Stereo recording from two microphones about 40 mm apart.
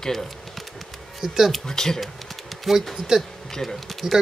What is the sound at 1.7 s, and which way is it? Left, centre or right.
Speech, centre.